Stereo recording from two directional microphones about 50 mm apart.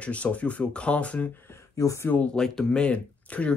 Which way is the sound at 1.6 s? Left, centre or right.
Left.